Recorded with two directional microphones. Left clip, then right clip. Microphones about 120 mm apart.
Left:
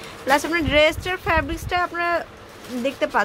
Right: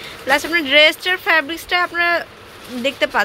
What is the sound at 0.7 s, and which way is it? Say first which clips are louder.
Speech: right 6 dB; 10° left (ahead or behind).